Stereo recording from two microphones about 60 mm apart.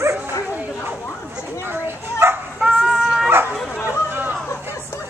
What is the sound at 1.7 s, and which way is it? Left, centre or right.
Bow-wow, right.